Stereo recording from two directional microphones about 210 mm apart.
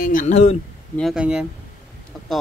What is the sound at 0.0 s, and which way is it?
Speech, 40° left (ahead or behind).